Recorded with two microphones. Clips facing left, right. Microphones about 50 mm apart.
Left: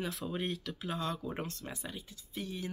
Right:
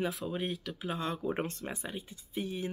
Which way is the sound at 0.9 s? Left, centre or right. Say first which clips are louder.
Right 3 dB; right.